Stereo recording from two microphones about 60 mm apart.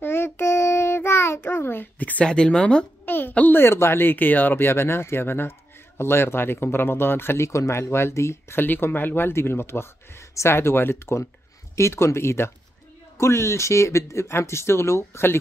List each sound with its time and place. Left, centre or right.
0.0 s child singing: left
2.2 s speech: centre
3.1 s a sound: left
3.6 s speech: left
8.5 s speech: left